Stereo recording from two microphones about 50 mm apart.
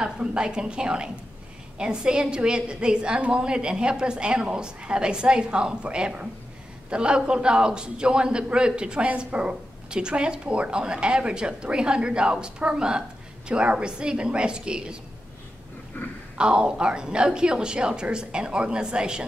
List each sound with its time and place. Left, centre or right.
0.0 s a man's voice: centre
16.3 s a woman's voice: centre